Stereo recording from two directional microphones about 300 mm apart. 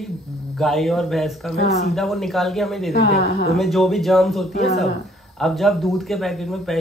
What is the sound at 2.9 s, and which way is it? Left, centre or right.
Speech, left.